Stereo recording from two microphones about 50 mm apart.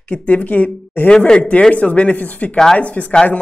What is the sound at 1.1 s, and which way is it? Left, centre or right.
A man's voice, centre.